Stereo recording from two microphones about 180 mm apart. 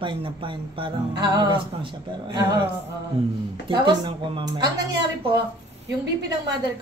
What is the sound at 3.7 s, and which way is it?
Speech, 30° right (ahead or behind).